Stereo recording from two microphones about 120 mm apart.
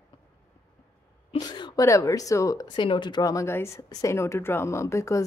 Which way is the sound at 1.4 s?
40° left (ahead or behind).